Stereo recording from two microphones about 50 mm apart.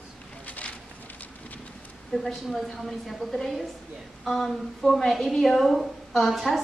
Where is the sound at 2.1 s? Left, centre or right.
Centre.